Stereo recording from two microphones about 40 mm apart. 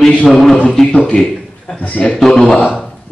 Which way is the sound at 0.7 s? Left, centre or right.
Centre.